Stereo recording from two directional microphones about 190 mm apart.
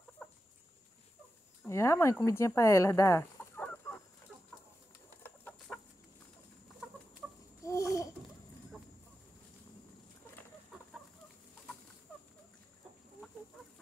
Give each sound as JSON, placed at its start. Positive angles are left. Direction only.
{"t": 0.2, "sound": "chicken", "side_deg": 5}
{"t": 1.7, "sound": "speech", "side_deg": 15}
{"t": 5.2, "sound": "chicken", "side_deg": 10}
{"t": 7.2, "sound": "chicken", "side_deg": 0}
{"t": 7.6, "sound": "babbling", "side_deg": 15}